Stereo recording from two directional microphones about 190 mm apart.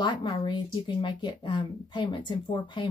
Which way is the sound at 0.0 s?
25° left (ahead or behind).